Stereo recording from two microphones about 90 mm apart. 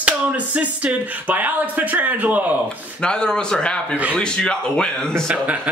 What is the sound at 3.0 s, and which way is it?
Speech, 10° left (ahead or behind).